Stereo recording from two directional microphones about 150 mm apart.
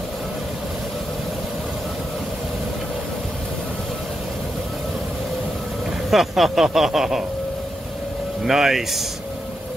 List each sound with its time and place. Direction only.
6.0 s speech: centre (ahead or behind)
8.5 s speech: 5° right (ahead or behind)